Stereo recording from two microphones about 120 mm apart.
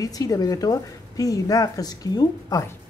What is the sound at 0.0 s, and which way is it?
A woman's voice, 30° left (ahead or behind).